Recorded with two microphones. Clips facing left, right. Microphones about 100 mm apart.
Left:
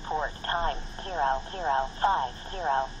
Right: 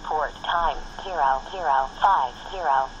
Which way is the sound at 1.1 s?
40° right (ahead or behind).